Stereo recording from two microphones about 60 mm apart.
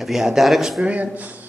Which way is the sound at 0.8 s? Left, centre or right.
Right.